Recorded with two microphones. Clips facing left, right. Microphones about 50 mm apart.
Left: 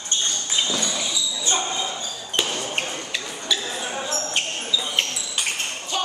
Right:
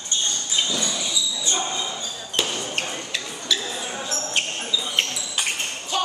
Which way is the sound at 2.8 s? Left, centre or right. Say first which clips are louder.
Even; centre.